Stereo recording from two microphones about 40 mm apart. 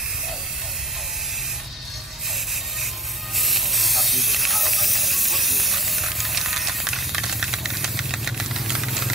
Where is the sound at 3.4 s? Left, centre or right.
Centre.